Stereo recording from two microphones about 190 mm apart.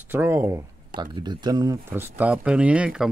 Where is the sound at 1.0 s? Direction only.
25° right (ahead or behind).